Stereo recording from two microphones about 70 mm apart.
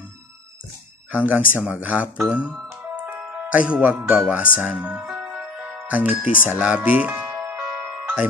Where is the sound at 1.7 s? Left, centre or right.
Centre.